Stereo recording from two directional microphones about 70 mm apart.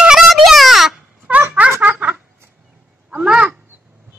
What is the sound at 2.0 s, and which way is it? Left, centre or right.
Fowl, right.